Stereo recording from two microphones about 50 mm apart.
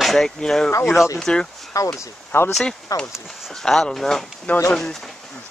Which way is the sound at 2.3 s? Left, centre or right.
Left.